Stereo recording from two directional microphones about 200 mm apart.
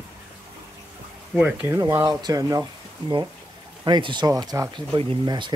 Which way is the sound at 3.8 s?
25° right (ahead or behind).